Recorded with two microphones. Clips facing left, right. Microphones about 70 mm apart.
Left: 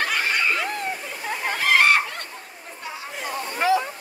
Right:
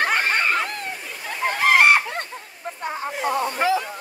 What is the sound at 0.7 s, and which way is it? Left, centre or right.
Waterfall, centre.